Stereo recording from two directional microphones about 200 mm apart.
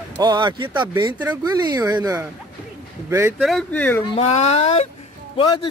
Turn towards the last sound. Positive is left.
turn(degrees=25)  # may be behind; listen again after turning